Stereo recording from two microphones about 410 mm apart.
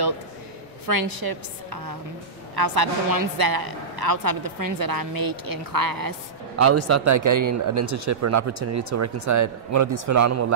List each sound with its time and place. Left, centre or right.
0.8 s a woman's voice: right
6.6 s speech: right